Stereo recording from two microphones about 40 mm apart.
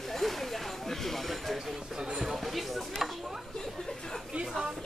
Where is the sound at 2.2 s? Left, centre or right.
Centre.